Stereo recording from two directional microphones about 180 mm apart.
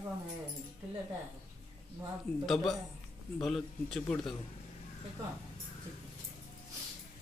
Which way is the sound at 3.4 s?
Centre (ahead or behind).